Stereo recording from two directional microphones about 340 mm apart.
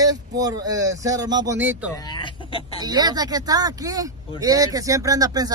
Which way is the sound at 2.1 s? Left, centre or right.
Centre.